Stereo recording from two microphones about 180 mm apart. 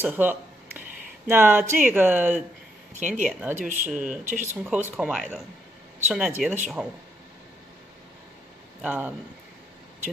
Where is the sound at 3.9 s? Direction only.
5° right (ahead or behind).